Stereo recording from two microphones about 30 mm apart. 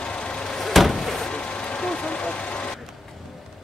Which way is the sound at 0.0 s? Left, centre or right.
Left.